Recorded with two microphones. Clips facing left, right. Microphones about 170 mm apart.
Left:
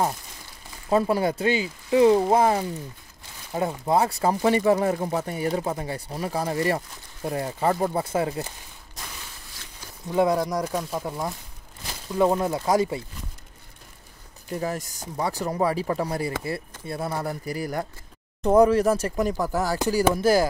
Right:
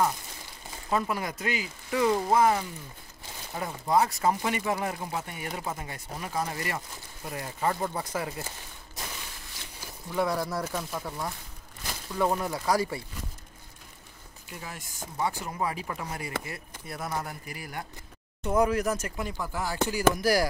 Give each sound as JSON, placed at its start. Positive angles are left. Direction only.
{"t": 0.8, "sound": "speech", "side_deg": 30}
{"t": 10.1, "sound": "speech", "side_deg": 20}
{"t": 10.9, "sound": "speech", "side_deg": 25}
{"t": 14.5, "sound": "speech", "side_deg": 40}